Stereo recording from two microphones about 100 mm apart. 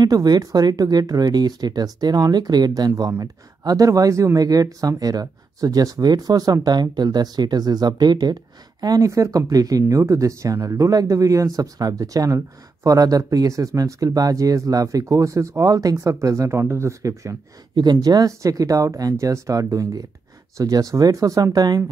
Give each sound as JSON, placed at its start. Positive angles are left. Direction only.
{"t": 0.0, "sound": "speech", "side_deg": -40}
{"t": 17.7, "sound": "speech", "side_deg": -45}